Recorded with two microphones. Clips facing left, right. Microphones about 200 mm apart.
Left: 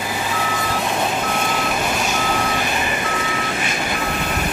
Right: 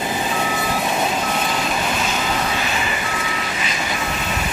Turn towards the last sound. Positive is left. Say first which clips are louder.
# left 2 dB
turn(degrees=55)  # may be behind; listen again after turning